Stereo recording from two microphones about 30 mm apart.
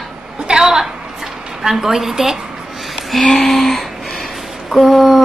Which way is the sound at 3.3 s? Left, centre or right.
Centre.